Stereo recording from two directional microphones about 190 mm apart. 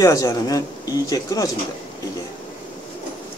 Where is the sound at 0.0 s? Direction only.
20° left (ahead or behind).